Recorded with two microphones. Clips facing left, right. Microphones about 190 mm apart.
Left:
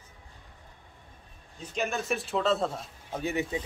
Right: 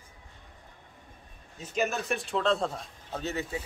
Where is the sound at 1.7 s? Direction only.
Centre (ahead or behind); by 3.6 s 15° left (ahead or behind).